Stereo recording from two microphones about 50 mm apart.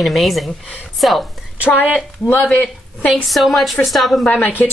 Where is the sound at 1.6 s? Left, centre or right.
Left.